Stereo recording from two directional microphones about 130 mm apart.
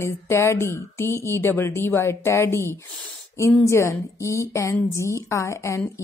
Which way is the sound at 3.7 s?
20° left (ahead or behind).